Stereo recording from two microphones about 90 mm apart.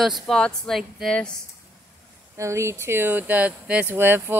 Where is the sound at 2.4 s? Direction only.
30° right (ahead or behind).